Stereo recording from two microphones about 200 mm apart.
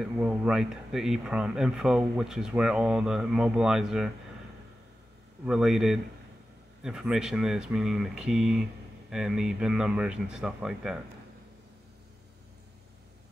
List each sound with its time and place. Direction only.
0.0 s speech: 5° right (ahead or behind)
5.4 s speech: 5° right (ahead or behind)